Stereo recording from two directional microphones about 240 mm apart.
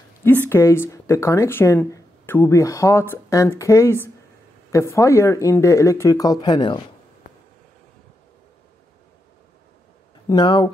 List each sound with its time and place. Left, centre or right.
0.2 s speech: centre
10.2 s speech: centre